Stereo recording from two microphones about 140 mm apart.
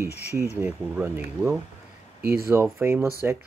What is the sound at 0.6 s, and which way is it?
Speech, 10° right (ahead or behind).